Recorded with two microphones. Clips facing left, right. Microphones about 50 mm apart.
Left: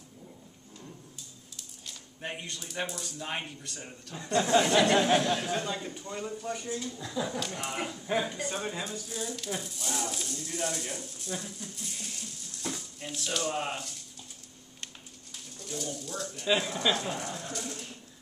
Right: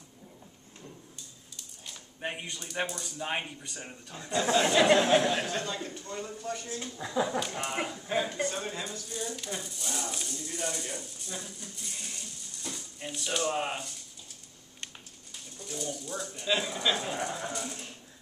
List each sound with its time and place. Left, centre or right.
1.9 s a sound: centre
2.9 s speech: centre
3.2 s speech: centre
4.5 s speech: centre
5.5 s speech: centre
7.1 s speech: centre
8.5 s speech: centre
15.3 s speech: centre
17.5 s a sound: centre